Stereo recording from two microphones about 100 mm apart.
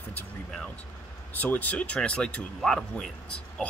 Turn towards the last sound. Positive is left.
turn(degrees=10)  # may be behind; listen again after turning